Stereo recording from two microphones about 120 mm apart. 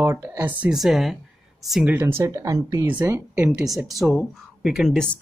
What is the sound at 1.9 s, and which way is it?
Speech, 20° right (ahead or behind).